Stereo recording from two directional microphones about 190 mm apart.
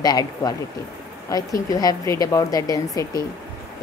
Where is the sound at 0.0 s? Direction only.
20° left (ahead or behind).